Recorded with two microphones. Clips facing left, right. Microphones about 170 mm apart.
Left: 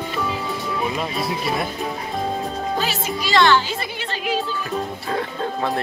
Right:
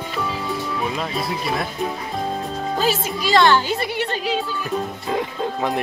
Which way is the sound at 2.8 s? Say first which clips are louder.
Right 3 dB; 45° right (ahead or behind).